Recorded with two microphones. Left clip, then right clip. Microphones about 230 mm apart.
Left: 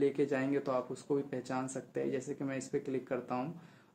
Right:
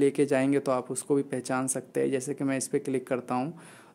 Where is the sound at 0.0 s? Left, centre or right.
Right.